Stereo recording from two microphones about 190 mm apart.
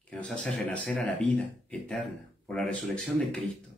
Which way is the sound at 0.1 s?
5° left (ahead or behind).